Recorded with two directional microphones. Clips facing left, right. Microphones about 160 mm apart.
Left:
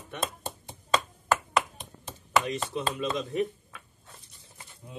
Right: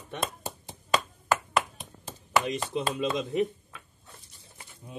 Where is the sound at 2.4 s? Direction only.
15° right (ahead or behind).